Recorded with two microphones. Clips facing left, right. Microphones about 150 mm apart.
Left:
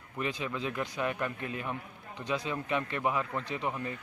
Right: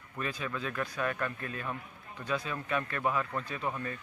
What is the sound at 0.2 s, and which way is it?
Speech, 20° left (ahead or behind).